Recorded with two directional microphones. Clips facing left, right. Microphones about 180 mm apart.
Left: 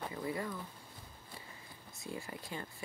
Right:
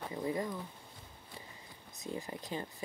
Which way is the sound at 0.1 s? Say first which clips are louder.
Right 7 dB; 20° right (ahead or behind).